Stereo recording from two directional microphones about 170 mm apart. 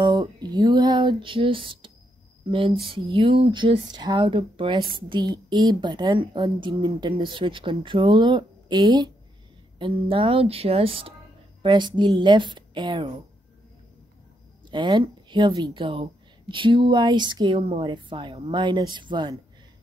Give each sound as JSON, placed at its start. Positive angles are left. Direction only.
{"t": 0.0, "sound": "a sound", "side_deg": -25}
{"t": 2.5, "sound": "a woman's voice", "side_deg": -30}
{"t": 14.7, "sound": "a woman's voice", "side_deg": -25}